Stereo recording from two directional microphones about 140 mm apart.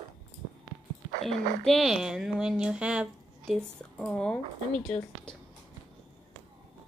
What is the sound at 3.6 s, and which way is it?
Speech, 5° left (ahead or behind).